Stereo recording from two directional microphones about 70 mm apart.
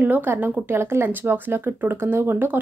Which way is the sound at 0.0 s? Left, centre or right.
Right.